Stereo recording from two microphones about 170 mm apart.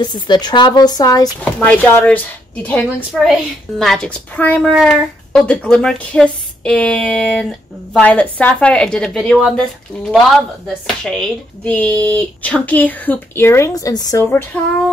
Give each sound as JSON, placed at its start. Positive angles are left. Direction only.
{"t": 0.0, "sound": "a woman's voice", "side_deg": 25}
{"t": 1.4, "sound": "a woman's voice", "side_deg": 10}
{"t": 10.7, "sound": "speech", "side_deg": 5}